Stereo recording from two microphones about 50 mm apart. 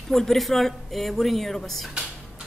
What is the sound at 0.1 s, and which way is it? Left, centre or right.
A woman's voice, centre.